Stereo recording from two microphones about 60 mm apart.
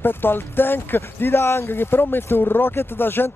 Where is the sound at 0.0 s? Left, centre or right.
Left.